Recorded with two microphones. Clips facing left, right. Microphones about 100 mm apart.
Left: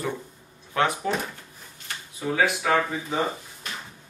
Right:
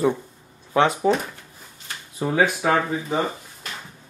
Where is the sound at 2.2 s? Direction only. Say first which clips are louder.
Right 4 dB; 35° right (ahead or behind).